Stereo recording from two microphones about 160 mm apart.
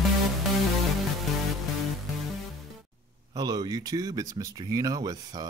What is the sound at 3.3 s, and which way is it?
Speech, 25° right (ahead or behind).